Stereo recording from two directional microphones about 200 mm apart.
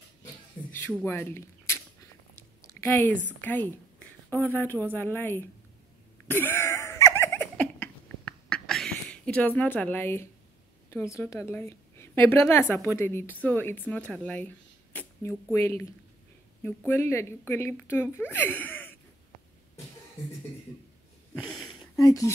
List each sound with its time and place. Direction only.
0.7 s a sound: 10° left (ahead or behind)
3.3 s a woman's voice: 10° left (ahead or behind)
6.2 s a sound: 10° left (ahead or behind)
10.9 s a woman's voice: 15° left (ahead or behind)
15.5 s a woman's voice: 10° left (ahead or behind)
22.0 s speech: 15° left (ahead or behind)